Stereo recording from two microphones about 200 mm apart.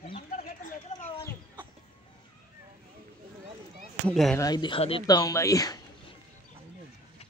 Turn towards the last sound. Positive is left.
turn(degrees=15)  # may be behind; listen again after turning